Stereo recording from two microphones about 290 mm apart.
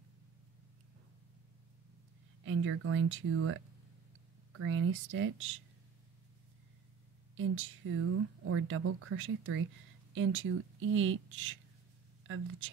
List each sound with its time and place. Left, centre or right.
2.4 s speech: right
7.3 s speech: right